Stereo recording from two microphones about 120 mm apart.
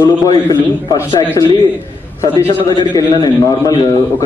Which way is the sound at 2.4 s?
20° left (ahead or behind).